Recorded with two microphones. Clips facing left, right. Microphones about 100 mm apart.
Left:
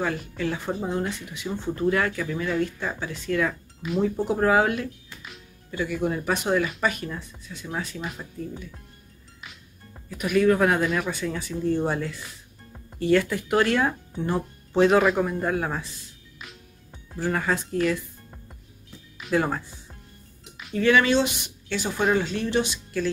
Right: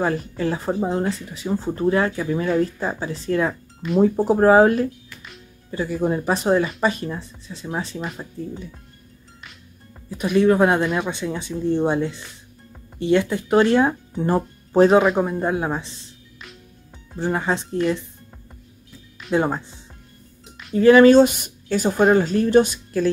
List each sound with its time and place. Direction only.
0.0 s speech: 35° right (ahead or behind)
10.0 s speech: 30° right (ahead or behind)
14.2 s speech: 40° right (ahead or behind)
15.1 s speech: 20° right (ahead or behind)
16.3 s music: 5° left (ahead or behind)
17.1 s speech: 20° right (ahead or behind)
19.3 s speech: 20° right (ahead or behind)
20.7 s speech: 35° right (ahead or behind)